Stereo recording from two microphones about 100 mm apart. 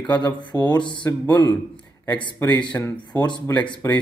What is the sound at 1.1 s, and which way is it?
Speech, 25° left (ahead or behind).